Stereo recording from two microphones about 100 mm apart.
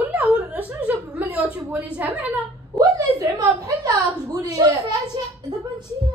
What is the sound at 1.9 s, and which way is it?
Speech, 15° right (ahead or behind).